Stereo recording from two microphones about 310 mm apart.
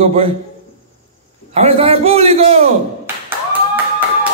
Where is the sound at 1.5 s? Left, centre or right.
Centre.